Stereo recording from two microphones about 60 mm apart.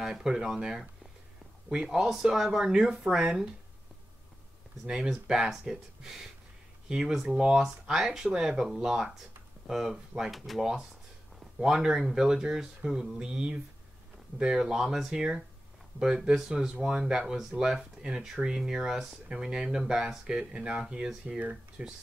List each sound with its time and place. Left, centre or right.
0.0 s speech: centre
4.8 s speech: centre